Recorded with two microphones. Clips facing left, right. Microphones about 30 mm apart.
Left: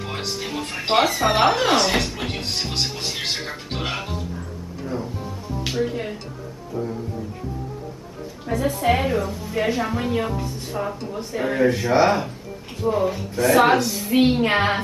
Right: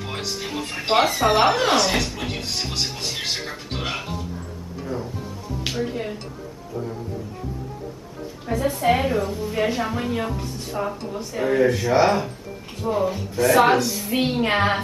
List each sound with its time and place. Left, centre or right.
0.0 s a woman's voice: centre
2.1 s music: centre
4.8 s a woman's voice: centre
8.5 s a woman's voice: centre